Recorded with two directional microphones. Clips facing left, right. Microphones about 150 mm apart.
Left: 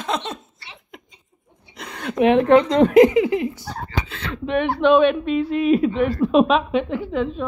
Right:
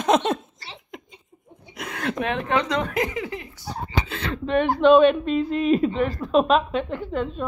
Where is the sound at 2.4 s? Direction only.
50° left (ahead or behind).